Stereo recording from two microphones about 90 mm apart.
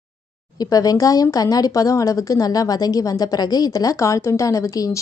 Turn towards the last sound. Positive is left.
turn(degrees=40)  # may be behind; listen again after turning